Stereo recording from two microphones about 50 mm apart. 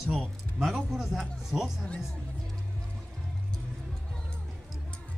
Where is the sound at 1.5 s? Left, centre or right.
Left.